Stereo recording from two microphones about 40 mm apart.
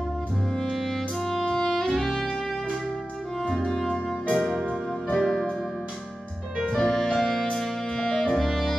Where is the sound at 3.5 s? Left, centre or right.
Centre.